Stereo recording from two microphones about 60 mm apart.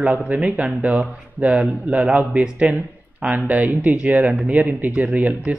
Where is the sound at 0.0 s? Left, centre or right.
Right.